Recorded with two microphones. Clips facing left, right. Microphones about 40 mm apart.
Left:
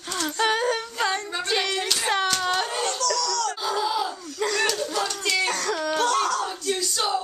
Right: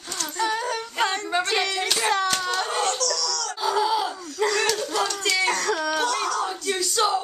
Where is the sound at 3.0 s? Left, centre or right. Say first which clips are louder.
Left 3 dB; left.